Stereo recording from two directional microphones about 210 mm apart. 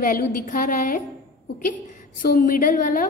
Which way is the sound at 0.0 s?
40° left (ahead or behind).